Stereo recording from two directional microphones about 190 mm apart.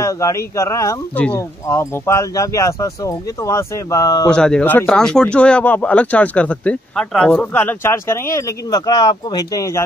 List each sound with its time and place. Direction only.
0.0 s speech: 15° left (ahead or behind)
4.3 s speech: 5° left (ahead or behind)